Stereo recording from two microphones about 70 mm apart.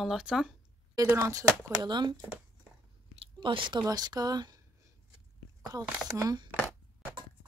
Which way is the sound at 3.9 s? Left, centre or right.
Right.